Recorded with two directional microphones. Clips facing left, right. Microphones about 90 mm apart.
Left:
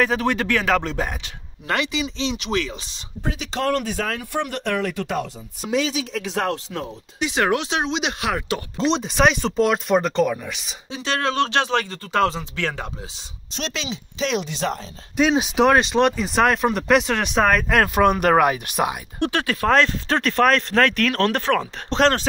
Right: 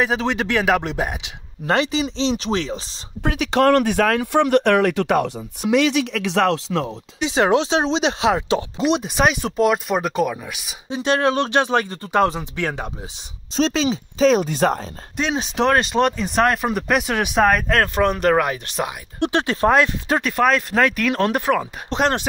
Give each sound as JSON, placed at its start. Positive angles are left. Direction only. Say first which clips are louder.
{"t": 0.0, "sound": "speech", "louder": "even", "side_deg": -20}
{"t": 1.7, "sound": "speech", "louder": "right 4 dB", "side_deg": -35}
{"t": 3.2, "sound": "speech", "louder": "right 8 dB", "side_deg": -70}
{"t": 7.2, "sound": "speech", "louder": "right 4 dB", "side_deg": -30}
{"t": 8.7, "sound": "speech", "louder": "left 2 dB", "side_deg": -10}
{"t": 10.9, "sound": "speech", "louder": "right 5 dB", "side_deg": -20}
{"t": 13.6, "sound": "speech", "louder": "right 10 dB", "side_deg": -35}
{"t": 15.1, "sound": "speech", "louder": "left 4 dB", "side_deg": 5}
{"t": 17.6, "sound": "speech", "louder": "left 1 dB", "side_deg": 10}
{"t": 19.1, "sound": "speech", "louder": "right 5 dB", "side_deg": -20}
{"t": 19.7, "sound": "speech", "louder": "left 1 dB", "side_deg": -10}